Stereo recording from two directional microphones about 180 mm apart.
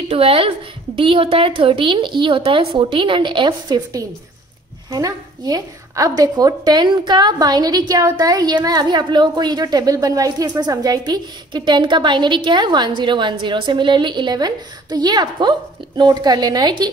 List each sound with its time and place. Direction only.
0.1 s a woman's voice: 30° right (ahead or behind)